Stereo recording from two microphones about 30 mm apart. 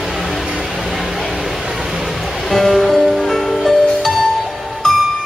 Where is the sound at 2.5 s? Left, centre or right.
Centre.